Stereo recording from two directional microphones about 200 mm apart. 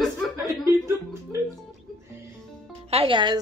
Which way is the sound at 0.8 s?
15° right (ahead or behind).